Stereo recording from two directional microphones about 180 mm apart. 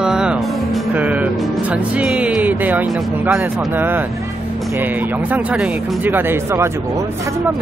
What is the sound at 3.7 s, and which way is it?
Speech, 10° right (ahead or behind).